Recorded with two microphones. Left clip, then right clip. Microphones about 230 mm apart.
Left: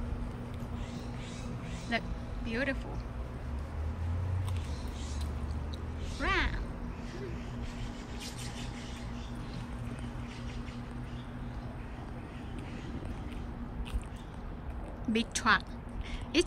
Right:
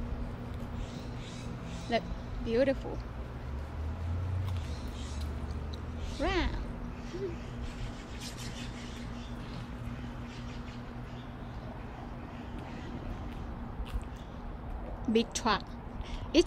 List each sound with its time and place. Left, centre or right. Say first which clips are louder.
1.9 s speech: right 3 dB; centre
6.2 s speech: left 1 dB; centre
15.1 s speech: left 1 dB; centre